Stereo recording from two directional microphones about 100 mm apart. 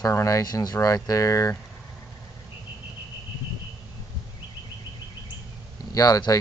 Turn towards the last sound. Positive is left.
turn(degrees=35)  # may be behind; listen again after turning